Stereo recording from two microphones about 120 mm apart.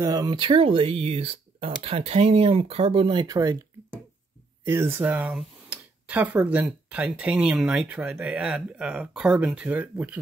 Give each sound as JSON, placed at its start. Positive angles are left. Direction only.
{"t": 0.0, "sound": "speech", "side_deg": -30}
{"t": 3.3, "sound": "speech", "side_deg": -30}
{"t": 4.6, "sound": "speech", "side_deg": -20}